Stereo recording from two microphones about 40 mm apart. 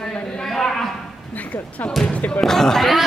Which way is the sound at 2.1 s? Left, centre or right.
Left.